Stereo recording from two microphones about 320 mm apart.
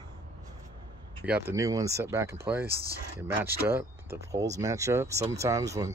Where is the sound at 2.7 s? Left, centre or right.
Right.